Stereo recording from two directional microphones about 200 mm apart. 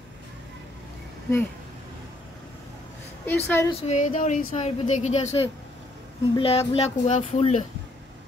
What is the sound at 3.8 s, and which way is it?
A woman's voice, 35° left (ahead or behind).